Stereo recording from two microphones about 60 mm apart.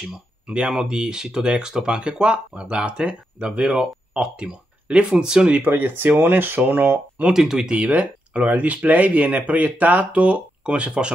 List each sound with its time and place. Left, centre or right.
0.0 s speech: centre
5.6 s speech: right
7.2 s speech: centre
7.7 s speech: right